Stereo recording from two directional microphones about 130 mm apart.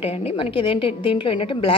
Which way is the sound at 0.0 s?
50° left (ahead or behind).